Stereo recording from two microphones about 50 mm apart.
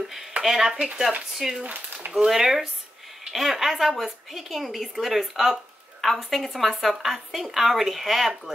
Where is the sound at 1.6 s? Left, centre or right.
Right.